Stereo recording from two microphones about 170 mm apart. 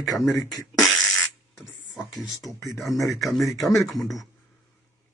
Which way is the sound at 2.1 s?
Centre (ahead or behind).